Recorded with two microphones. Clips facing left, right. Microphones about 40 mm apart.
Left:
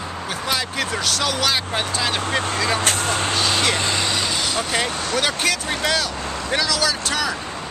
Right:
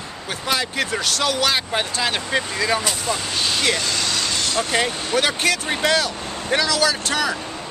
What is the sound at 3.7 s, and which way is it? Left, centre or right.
Speech, left.